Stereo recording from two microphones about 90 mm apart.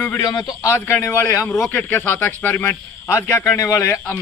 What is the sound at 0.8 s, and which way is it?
Speech, 30° left (ahead or behind).